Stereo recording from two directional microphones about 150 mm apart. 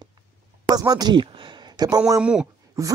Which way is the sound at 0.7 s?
25° right (ahead or behind).